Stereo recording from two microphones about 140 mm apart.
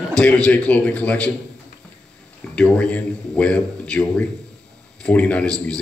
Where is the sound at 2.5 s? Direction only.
10° left (ahead or behind).